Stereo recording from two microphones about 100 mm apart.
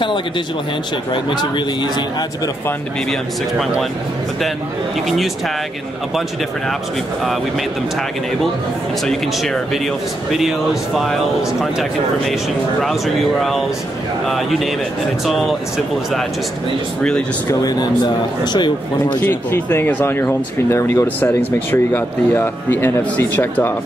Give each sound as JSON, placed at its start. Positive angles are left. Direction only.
{"t": 1.1, "sound": "speech", "side_deg": 50}
{"t": 5.0, "sound": "speech", "side_deg": 0}
{"t": 9.0, "sound": "speech", "side_deg": 5}
{"t": 12.8, "sound": "speech", "side_deg": 0}
{"t": 17.5, "sound": "speech", "side_deg": 40}
{"t": 19.2, "sound": "speech", "side_deg": 20}